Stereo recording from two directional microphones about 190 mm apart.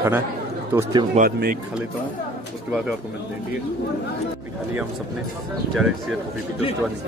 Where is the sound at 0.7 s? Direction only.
10° right (ahead or behind).